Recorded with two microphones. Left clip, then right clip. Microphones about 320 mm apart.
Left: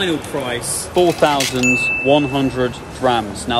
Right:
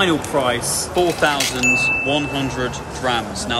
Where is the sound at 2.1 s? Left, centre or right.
Centre.